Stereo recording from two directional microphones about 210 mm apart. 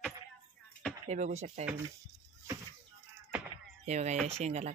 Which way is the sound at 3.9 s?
35° right (ahead or behind).